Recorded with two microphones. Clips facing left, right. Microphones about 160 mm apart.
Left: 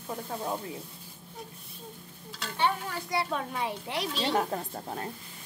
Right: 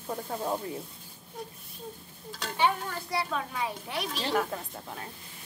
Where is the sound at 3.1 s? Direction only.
25° left (ahead or behind).